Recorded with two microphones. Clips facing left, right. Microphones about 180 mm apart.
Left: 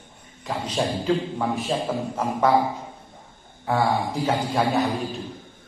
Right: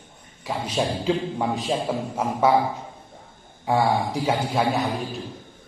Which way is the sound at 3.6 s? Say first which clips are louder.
Right 1 dB; 15° right (ahead or behind).